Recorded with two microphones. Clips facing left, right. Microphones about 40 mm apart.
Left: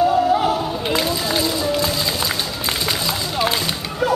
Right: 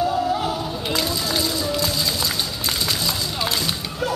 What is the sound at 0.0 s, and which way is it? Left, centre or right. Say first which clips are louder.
Music: left 5 dB; centre.